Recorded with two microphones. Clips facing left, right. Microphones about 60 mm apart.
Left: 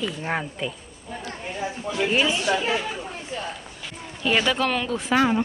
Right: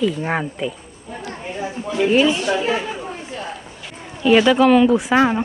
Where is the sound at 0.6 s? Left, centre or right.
Centre.